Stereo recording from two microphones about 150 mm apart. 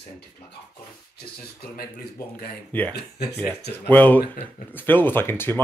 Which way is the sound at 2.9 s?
90° left.